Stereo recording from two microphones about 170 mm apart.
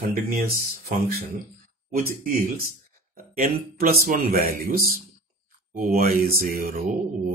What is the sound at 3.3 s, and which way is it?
Speech, 55° right (ahead or behind).